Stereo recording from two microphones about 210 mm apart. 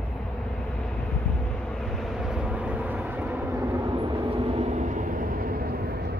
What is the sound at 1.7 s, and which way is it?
Vehicle, centre (ahead or behind).